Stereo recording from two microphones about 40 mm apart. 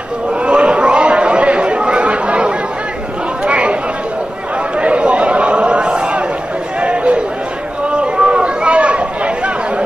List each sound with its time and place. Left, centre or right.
0.5 s chatter: right
4.7 s a sound: right
7.9 s chatter: right